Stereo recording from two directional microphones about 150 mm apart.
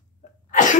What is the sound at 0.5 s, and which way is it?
Cough, 60° left (ahead or behind).